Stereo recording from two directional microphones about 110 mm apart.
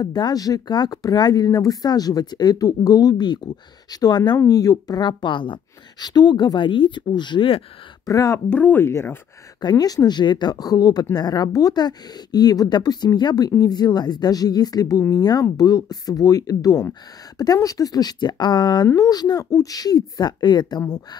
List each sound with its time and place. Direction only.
0.0 s a woman's voice: 40° left (ahead or behind)
8.0 s speech: 30° left (ahead or behind)
8.5 s speech: 15° left (ahead or behind)
9.6 s speech: 40° left (ahead or behind)